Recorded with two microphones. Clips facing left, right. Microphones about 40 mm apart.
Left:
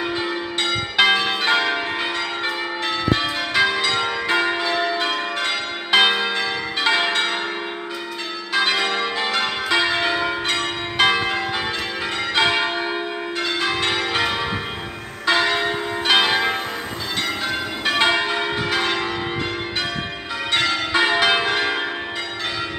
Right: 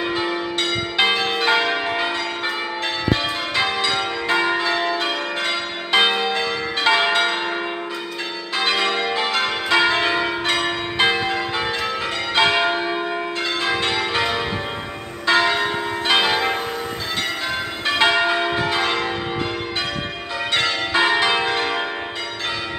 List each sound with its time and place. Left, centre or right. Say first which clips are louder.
0.1 s change ringing: right 2 dB; centre
0.6 s change ringing: left 4 dB; left
1.1 s change ringing: even; centre
6.9 s change ringing: right 3 dB; centre
8.6 s change ringing: right 5 dB; centre
11.1 s change ringing: even; centre
12.4 s church bell: right 2 dB; centre
13.4 s change ringing: left 1 dB; centre
13.8 s change ringing: even; centre
15.2 s church bell: right 1 dB; centre
17.8 s church bell: right 2 dB; centre
20.5 s change ringing: even; centre
21.2 s change ringing: left 1 dB; centre